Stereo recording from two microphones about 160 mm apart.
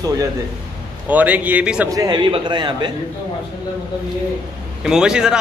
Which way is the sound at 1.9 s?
25° right (ahead or behind).